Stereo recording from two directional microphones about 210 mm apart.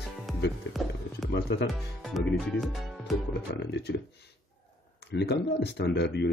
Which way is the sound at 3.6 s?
55° left (ahead or behind).